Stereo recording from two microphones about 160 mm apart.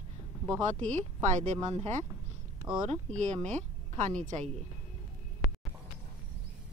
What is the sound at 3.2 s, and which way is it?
Speech, 45° right (ahead or behind).